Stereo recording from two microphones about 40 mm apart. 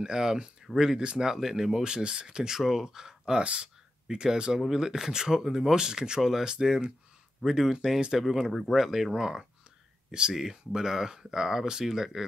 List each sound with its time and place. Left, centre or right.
0.0 s speech: centre